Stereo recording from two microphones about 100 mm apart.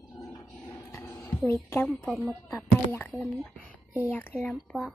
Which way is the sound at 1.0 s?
25° left (ahead or behind).